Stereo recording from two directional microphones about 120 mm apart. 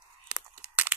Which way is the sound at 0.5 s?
15° right (ahead or behind).